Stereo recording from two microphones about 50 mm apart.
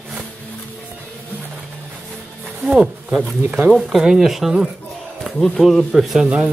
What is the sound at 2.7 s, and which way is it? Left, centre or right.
Speech, centre.